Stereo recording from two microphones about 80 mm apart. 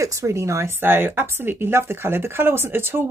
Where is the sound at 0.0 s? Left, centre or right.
Right.